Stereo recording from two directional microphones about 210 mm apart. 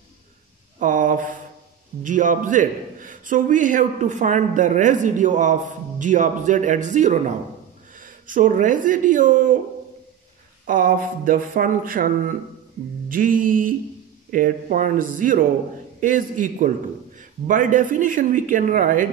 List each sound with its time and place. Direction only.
0.7 s a sound: 40° right (ahead or behind)
2.0 s a man's voice: 40° right (ahead or behind)
10.7 s a man's voice: 40° right (ahead or behind)